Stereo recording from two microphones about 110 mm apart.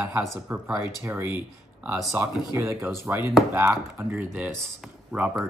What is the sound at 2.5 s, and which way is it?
Speech, 25° right (ahead or behind).